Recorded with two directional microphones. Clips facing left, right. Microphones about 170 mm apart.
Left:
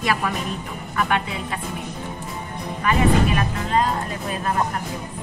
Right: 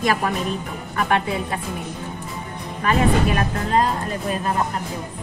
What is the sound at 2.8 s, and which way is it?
Speech, 45° right (ahead or behind).